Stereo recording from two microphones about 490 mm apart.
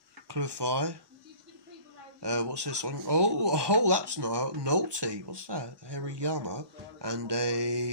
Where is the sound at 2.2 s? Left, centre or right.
Right.